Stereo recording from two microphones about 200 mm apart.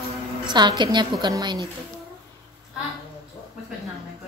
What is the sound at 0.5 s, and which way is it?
A woman's voice, 20° right (ahead or behind).